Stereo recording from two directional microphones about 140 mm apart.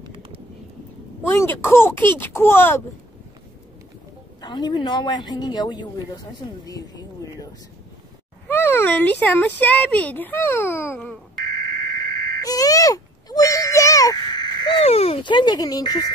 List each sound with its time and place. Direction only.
1.2 s speech: 10° left (ahead or behind)
4.4 s speech: 30° left (ahead or behind)
8.5 s speech: 15° left (ahead or behind)
11.5 s a sound: 25° left (ahead or behind)
11.9 s radio: 25° left (ahead or behind)
12.3 s a sound: 25° left (ahead or behind)
14.8 s speech: 45° left (ahead or behind)
15.2 s speech: 35° left (ahead or behind)